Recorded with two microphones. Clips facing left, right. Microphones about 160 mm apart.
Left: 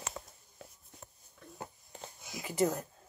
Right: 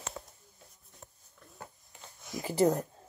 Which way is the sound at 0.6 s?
75° left (ahead or behind).